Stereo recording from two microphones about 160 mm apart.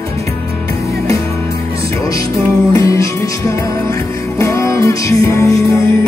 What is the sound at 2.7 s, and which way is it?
Music, 20° left (ahead or behind).